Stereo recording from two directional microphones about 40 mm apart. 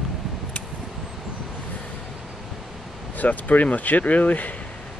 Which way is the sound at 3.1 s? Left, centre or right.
Left.